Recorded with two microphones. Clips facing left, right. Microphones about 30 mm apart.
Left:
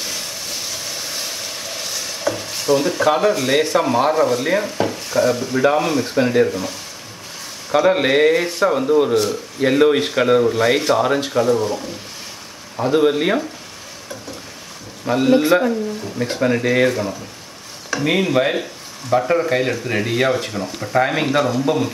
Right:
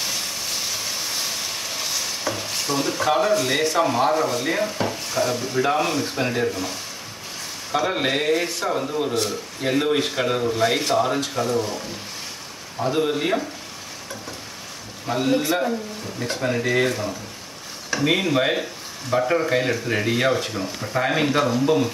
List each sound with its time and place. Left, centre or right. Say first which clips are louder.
0.0 s vehicle: even; centre
6.5 s speech: left 3 dB; centre
7.7 s speech: left 7 dB; centre
9.1 s speech: left 6 dB; centre
9.6 s speech: left 7 dB; centre
13.0 s speech: left 6 dB; left
15.0 s speech: left 6 dB; centre
15.4 s speech: left 7 dB; left
16.2 s speech: left 5 dB; centre